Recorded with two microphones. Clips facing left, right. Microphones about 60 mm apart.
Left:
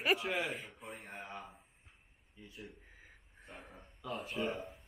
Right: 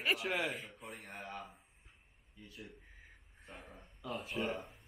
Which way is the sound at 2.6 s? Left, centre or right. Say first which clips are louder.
Left 2 dB; centre.